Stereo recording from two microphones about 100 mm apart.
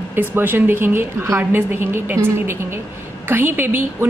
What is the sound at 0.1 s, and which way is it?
A woman's voice, 20° right (ahead or behind).